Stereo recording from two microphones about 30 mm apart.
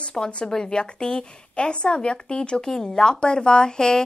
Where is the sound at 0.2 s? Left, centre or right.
Left.